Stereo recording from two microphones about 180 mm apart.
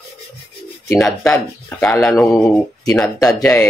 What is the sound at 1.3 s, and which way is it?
Speech, 10° left (ahead or behind).